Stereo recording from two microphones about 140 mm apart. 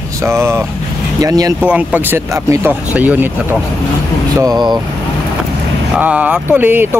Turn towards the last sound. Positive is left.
turn(degrees=-15)  # may be behind; listen again after turning